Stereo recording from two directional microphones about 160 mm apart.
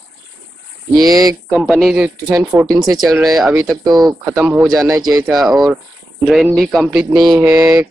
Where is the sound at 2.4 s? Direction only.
20° right (ahead or behind).